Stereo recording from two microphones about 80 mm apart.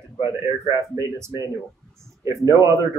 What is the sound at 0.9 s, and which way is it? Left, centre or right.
Speech, right.